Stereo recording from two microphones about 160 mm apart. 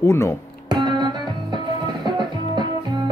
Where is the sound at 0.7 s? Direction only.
25° right (ahead or behind).